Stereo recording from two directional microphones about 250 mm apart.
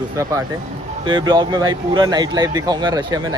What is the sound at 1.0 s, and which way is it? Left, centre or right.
Speech, centre.